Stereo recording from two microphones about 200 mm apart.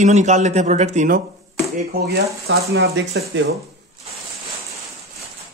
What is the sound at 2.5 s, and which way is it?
Speech, 55° right (ahead or behind).